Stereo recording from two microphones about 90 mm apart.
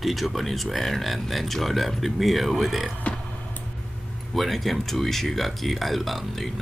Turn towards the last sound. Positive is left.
turn(degrees=0)  # may be behind; listen again after turning